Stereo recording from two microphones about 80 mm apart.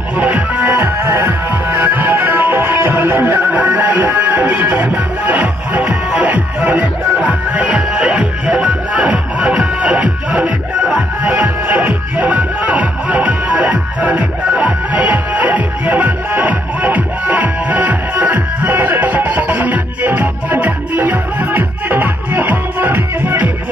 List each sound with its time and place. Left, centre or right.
0.2 s music: centre
0.7 s music: right